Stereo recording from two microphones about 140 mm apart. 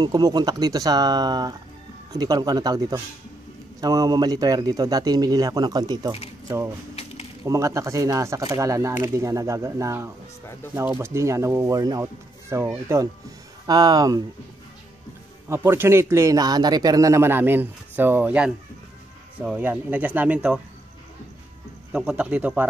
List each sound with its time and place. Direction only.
0.0 s speech: 30° right (ahead or behind)
7.4 s speech: 20° right (ahead or behind)
15.4 s speech: 20° right (ahead or behind)
21.9 s speech: 10° right (ahead or behind)